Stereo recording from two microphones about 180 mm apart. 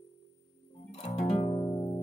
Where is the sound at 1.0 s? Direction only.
35° left (ahead or behind).